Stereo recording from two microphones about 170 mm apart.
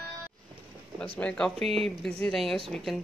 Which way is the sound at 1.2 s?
5° left (ahead or behind).